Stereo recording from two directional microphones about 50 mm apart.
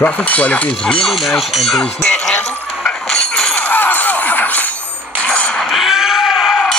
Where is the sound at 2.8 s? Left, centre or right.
Centre.